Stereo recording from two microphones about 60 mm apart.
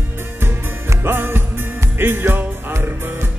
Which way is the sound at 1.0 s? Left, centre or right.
Right.